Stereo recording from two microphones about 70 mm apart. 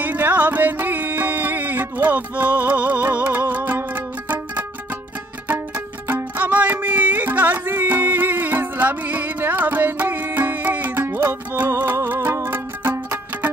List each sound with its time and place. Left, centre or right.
0.0 s music: right
6.0 s music: right